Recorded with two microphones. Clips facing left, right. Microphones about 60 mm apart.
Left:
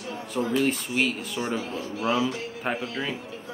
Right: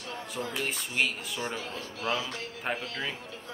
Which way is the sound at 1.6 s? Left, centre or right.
Left.